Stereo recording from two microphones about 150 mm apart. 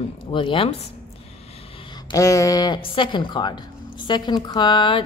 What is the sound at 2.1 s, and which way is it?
A woman's voice, 20° left (ahead or behind).